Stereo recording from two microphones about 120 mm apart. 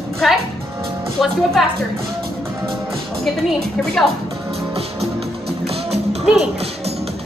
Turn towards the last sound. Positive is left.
turn(degrees=-60)  # may be behind; listen again after turning